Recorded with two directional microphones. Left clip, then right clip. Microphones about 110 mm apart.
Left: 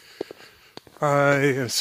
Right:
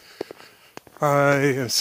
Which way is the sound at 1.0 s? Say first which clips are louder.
Right 1 dB; 30° right (ahead or behind).